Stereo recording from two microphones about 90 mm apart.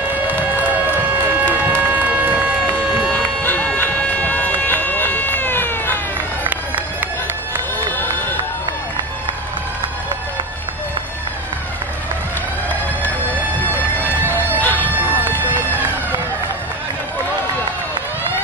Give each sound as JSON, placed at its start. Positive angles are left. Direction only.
{"t": 0.7, "sound": "a sound", "side_deg": -20}
{"t": 3.1, "sound": "run", "side_deg": 20}
{"t": 14.6, "sound": "music", "side_deg": 20}